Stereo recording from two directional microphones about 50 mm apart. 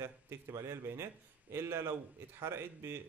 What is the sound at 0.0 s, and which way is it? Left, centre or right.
Speech, right.